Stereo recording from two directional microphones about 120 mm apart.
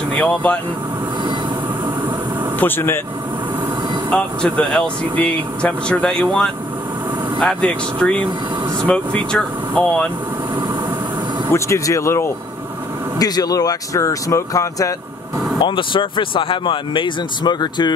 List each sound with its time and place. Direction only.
0.1 s speech: 10° left (ahead or behind)
2.6 s speech: 20° left (ahead or behind)
4.1 s speech: 5° left (ahead or behind)
11.5 s speech: 25° left (ahead or behind)
15.6 s speech: 45° left (ahead or behind)